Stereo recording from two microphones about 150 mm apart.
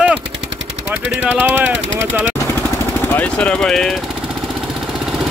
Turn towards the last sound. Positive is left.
turn(degrees=5)  # may be behind; listen again after turning